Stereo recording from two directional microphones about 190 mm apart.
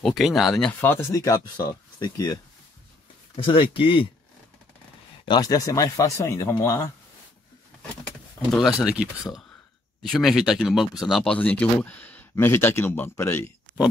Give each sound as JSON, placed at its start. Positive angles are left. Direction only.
{"t": 0.0, "sound": "speech", "side_deg": 0}
{"t": 3.3, "sound": "speech", "side_deg": 30}
{"t": 5.2, "sound": "speech", "side_deg": 20}
{"t": 8.5, "sound": "speech", "side_deg": 0}